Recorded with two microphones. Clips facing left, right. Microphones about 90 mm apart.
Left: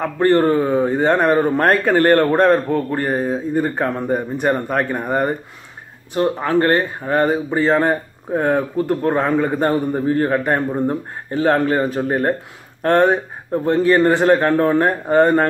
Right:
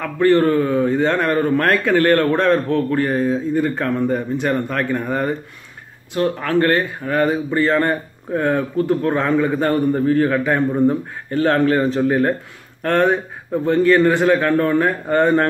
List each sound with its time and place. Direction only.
0.0 s speech: 25° left (ahead or behind)